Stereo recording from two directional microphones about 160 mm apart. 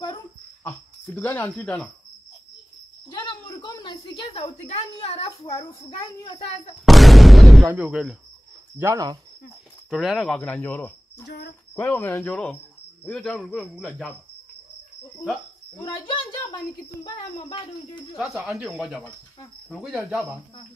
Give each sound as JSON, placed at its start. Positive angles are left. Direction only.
{"t": 0.7, "sound": "cricket", "side_deg": 15}
{"t": 3.1, "sound": "a woman's voice", "side_deg": 30}
{"t": 6.9, "sound": "a sound", "side_deg": 0}
{"t": 8.7, "sound": "speech", "side_deg": -20}
{"t": 9.8, "sound": "speech", "side_deg": 0}
{"t": 11.2, "sound": "a sound", "side_deg": 90}
{"t": 11.7, "sound": "speech", "side_deg": 10}
{"t": 15.8, "sound": "a child's voice", "side_deg": 30}
{"t": 18.3, "sound": "speech", "side_deg": -5}